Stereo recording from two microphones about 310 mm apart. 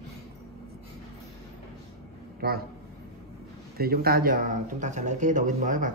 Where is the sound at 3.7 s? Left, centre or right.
Right.